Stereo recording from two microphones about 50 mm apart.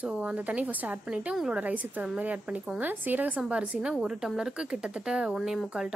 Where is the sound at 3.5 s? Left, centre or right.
Right.